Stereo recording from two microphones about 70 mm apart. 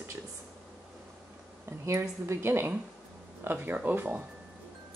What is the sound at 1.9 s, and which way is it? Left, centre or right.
Speech, right.